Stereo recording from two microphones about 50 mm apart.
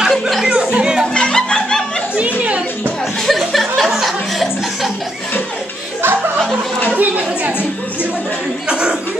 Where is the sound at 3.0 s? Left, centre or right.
Centre.